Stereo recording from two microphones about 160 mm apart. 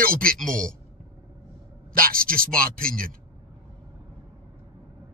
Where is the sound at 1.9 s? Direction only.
65° right (ahead or behind).